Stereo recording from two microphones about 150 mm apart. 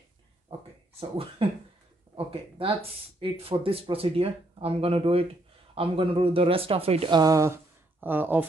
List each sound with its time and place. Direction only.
0.9 s speech: 40° right (ahead or behind)
3.2 s speech: 40° right (ahead or behind); by 8.5 s 10° right (ahead or behind)